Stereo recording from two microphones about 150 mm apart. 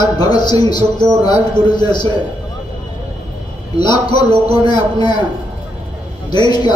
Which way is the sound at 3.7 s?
30° left (ahead or behind).